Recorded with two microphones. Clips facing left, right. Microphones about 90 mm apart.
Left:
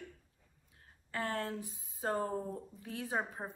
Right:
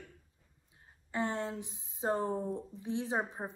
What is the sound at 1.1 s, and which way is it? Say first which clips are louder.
Speech: right 2 dB; 20° right (ahead or behind).